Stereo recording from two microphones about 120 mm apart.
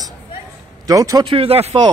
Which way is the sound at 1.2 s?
50° right (ahead or behind).